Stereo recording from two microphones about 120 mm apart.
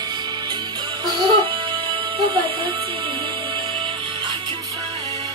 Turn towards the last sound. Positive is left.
turn(degrees=-45)  # may be behind; listen again after turning